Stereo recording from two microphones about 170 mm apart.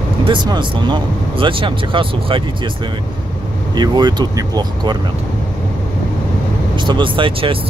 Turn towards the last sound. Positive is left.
turn(degrees=-30)  # may be behind; listen again after turning